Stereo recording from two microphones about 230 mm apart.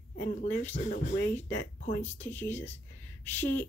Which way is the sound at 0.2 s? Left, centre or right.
Left.